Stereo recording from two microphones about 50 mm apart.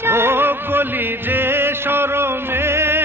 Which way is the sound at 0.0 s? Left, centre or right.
Right.